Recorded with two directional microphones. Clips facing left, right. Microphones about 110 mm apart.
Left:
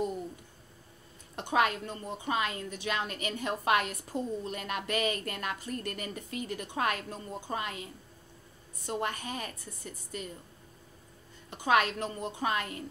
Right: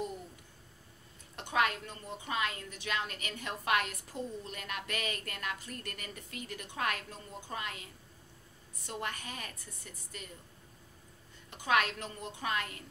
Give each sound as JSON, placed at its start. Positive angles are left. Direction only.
{"t": 1.3, "sound": "a woman's voice", "side_deg": 25}
{"t": 11.5, "sound": "a woman's voice", "side_deg": 25}